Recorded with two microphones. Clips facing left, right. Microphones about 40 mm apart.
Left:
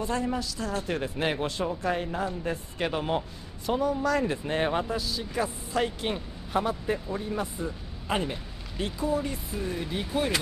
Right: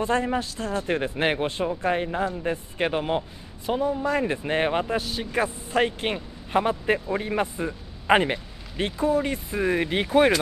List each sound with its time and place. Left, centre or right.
0.0 s a man's voice: right
4.9 s a man's voice: right